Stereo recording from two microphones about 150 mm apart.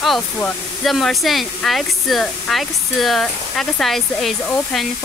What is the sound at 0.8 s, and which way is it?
Speech, centre (ahead or behind).